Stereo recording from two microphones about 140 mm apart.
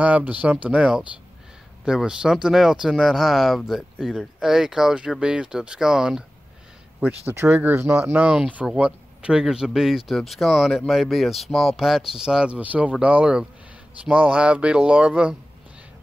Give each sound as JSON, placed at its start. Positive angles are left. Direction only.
{"t": 0.0, "sound": "speech", "side_deg": -10}
{"t": 7.2, "sound": "speech", "side_deg": -15}